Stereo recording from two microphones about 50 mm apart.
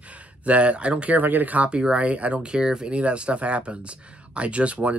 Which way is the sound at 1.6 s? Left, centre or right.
Right.